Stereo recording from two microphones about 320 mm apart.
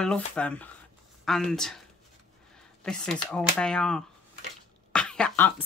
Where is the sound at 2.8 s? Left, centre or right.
Centre.